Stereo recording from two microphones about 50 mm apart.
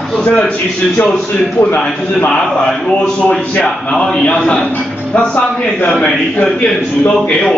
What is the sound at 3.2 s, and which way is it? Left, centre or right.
Speech, left.